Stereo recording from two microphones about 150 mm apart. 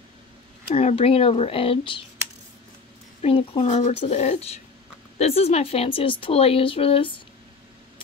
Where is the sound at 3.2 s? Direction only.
40° left (ahead or behind).